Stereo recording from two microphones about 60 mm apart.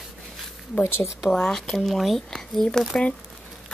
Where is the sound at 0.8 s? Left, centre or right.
Left.